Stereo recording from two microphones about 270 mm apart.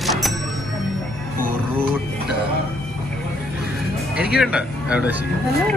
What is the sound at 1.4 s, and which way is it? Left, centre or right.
Music, right.